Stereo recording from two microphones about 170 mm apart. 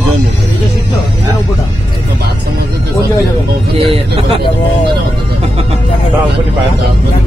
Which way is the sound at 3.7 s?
35° right (ahead or behind).